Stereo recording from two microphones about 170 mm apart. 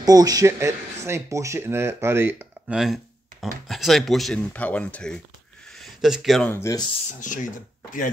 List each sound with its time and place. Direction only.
0.0 s speech: 20° right (ahead or behind)
2.8 s speech: centre (ahead or behind)
6.5 s speech: 20° left (ahead or behind)
6.9 s speech: 45° left (ahead or behind)